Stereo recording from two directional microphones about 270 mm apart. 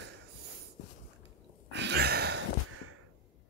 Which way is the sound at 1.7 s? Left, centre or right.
Right.